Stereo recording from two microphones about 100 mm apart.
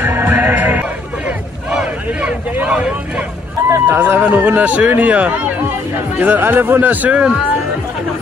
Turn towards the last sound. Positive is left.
turn(degrees=-15)  # may be behind; listen again after turning